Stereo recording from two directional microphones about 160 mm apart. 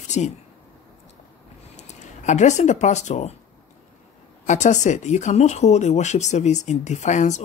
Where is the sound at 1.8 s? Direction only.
45° left (ahead or behind).